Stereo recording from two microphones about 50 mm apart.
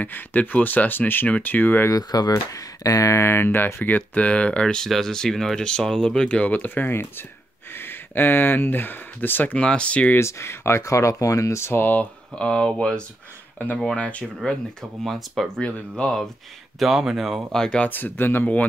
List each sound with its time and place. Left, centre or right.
0.0 s speech: left
3.0 s speech: left
3.3 s speech: left; by 4.8 s centre
4.8 s speech: centre; by 9.6 s left
9.6 s speech: left
10.1 s speech: left
11.8 s speech: left
12.4 s speech: centre
14.4 s speech: centre
15.1 s speech: centre
16.8 s speech: centre
17.5 s speech: centre
17.7 s speech: left